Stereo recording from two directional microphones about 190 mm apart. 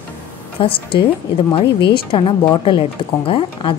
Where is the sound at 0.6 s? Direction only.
30° left (ahead or behind).